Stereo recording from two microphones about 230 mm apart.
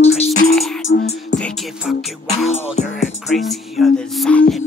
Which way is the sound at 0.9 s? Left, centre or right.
Left.